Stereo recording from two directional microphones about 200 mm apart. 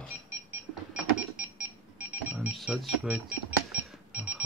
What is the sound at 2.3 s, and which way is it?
Cash register, 5° right (ahead or behind).